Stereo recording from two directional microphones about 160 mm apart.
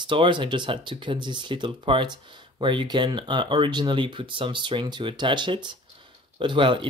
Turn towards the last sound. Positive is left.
turn(degrees=-30)  # may be behind; listen again after turning